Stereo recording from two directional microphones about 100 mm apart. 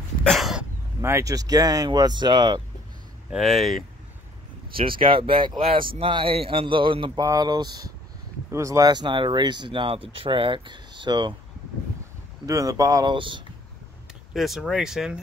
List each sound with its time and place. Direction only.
0.2 s a sound: centre (ahead or behind)
1.0 s speech: 30° right (ahead or behind); by 2.6 s 45° right (ahead or behind)
3.3 s speech: centre (ahead or behind)
4.7 s a man's voice: 60° right (ahead or behind)
7.2 s speech: 40° right (ahead or behind)
8.5 s speech: 30° right (ahead or behind); by 11.3 s 50° right (ahead or behind)
12.4 s speech: 35° right (ahead or behind)
13.1 s speech: 55° right (ahead or behind)
14.3 s speech: 5° right (ahead or behind)